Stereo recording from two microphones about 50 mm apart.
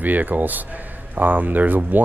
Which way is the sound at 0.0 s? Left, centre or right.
Right.